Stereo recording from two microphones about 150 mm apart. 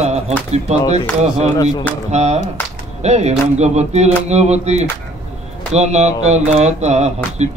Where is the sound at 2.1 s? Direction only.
50° right (ahead or behind).